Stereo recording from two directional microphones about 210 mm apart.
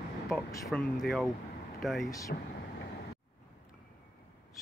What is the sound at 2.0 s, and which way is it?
Speech, 15° left (ahead or behind).